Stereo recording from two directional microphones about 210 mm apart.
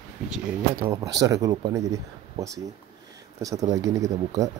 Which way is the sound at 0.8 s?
15° right (ahead or behind).